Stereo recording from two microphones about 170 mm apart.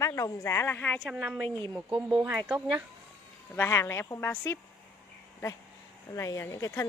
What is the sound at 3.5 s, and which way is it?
Speech, 15° left (ahead or behind).